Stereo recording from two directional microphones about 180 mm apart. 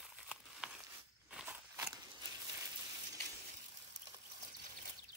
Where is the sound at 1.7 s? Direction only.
20° right (ahead or behind).